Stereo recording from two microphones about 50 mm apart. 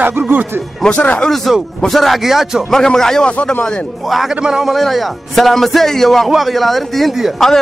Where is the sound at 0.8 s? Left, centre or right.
Left.